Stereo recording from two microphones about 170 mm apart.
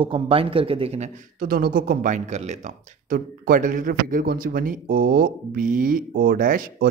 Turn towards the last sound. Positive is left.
turn(degrees=-55)  # may be behind; listen again after turning